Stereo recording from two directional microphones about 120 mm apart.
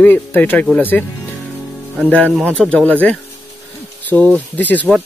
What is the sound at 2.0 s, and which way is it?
Speech, 10° left (ahead or behind).